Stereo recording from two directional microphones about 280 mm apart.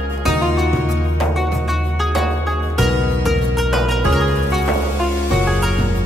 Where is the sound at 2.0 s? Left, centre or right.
Centre.